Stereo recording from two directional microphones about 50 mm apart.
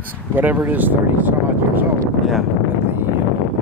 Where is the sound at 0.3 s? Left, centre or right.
Right.